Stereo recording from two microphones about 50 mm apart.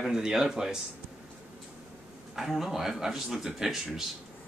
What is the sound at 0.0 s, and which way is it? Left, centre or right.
Speech, centre.